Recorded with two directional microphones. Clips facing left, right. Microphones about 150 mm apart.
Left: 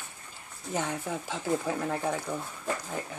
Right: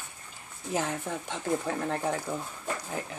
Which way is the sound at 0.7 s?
Centre (ahead or behind).